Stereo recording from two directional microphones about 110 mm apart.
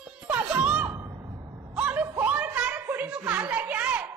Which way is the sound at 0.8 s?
30° right (ahead or behind).